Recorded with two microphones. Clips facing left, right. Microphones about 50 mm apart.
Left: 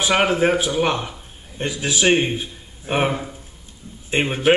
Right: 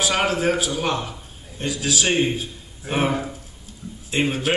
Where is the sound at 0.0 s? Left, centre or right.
Left.